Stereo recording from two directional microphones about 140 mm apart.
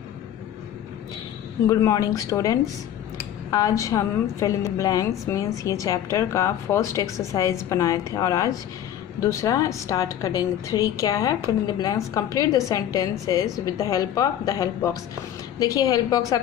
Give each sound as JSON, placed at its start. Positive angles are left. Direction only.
{"t": 1.7, "sound": "a woman's voice", "side_deg": 25}